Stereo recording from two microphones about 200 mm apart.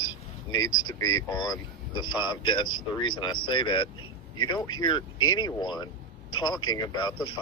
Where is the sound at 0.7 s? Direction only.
85° left.